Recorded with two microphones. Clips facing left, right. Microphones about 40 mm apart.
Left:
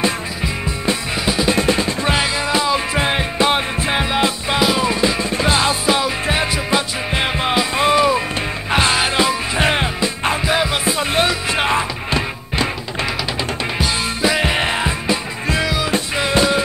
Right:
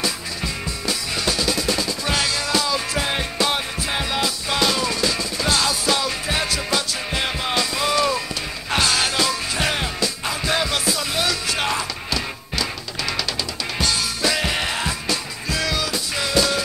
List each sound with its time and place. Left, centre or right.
1.2 s music: left
1.6 s music: left
13.7 s music: centre
16.2 s music: left